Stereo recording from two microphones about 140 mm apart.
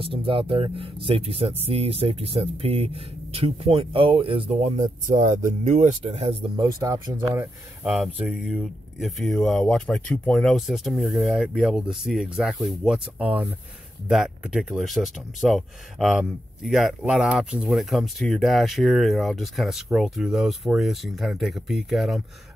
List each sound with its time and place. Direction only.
0.0 s speech: 40° right (ahead or behind)
6.5 s speech: 25° right (ahead or behind)
7.8 s speech: 5° right (ahead or behind)